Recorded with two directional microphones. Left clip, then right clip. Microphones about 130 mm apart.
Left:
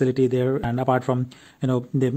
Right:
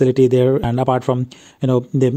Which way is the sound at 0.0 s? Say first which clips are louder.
Right 8 dB; 45° right (ahead or behind).